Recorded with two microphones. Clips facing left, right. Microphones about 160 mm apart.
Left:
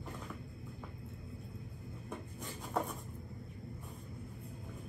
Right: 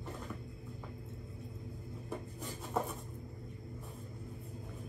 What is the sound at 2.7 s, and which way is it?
Cupboard open or close, centre (ahead or behind).